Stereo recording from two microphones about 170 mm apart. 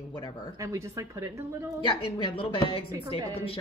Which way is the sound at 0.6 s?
15° right (ahead or behind).